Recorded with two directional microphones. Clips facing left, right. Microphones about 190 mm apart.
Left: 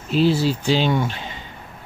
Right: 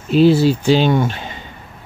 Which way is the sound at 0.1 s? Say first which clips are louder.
Right 6 dB; 60° right (ahead or behind).